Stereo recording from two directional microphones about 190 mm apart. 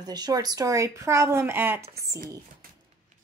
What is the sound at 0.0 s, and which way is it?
Speech, 20° right (ahead or behind).